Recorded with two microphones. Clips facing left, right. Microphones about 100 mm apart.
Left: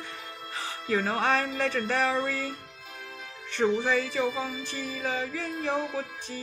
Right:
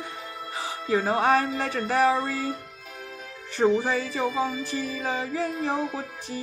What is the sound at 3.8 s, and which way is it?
Music, 20° right (ahead or behind).